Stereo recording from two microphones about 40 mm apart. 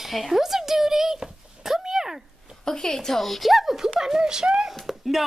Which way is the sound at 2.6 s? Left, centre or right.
Centre.